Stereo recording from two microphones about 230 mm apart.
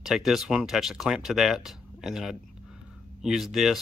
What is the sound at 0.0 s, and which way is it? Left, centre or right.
Speech, centre.